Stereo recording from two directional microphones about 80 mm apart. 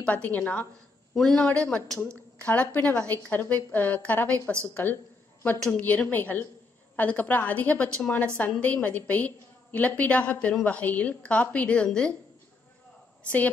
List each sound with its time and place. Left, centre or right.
0.0 s a woman's voice: centre
1.1 s speech: centre
1.4 s a woman's voice: centre
13.2 s a woman's voice: centre